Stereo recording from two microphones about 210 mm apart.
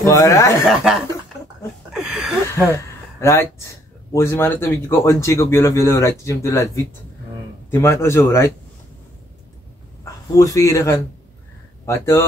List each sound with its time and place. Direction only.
0.0 s a man's voice: 15° left (ahead or behind)
0.7 s speech: centre (ahead or behind)
2.0 s a sound: centre (ahead or behind)
2.4 s a man's voice: 15° left (ahead or behind)
10.3 s a man's voice: 15° left (ahead or behind)